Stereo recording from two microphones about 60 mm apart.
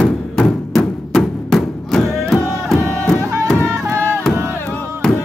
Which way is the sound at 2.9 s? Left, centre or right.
Left.